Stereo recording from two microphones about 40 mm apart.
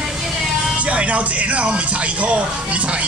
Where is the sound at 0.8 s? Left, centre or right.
Right.